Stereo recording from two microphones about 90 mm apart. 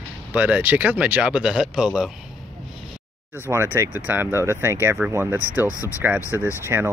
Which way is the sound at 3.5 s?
30° right (ahead or behind).